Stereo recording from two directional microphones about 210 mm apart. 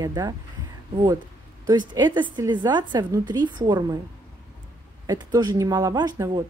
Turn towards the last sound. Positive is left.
turn(degrees=-15)  # may be behind; listen again after turning